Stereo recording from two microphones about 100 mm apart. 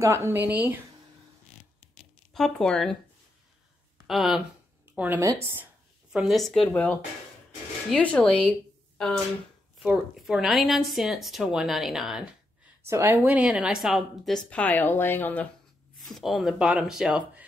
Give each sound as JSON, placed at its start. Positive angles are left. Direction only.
{"t": 0.0, "sound": "a woman's voice", "side_deg": -25}
{"t": 2.3, "sound": "speech", "side_deg": 5}
{"t": 4.1, "sound": "speech", "side_deg": 0}
{"t": 4.9, "sound": "speech", "side_deg": -15}
{"t": 5.2, "sound": "speech", "side_deg": -35}
{"t": 6.1, "sound": "speech", "side_deg": 0}
{"t": 6.6, "sound": "speech", "side_deg": 15}
{"t": 12.8, "sound": "speech", "side_deg": -30}
{"t": 13.2, "sound": "speech", "side_deg": -15}
{"t": 14.5, "sound": "speech", "side_deg": 15}
{"t": 16.1, "sound": "speech", "side_deg": 0}